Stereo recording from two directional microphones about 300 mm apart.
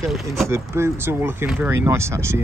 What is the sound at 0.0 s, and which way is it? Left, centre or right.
Speech, centre.